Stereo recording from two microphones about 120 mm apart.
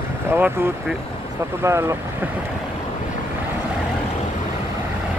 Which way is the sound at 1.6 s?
25° right (ahead or behind).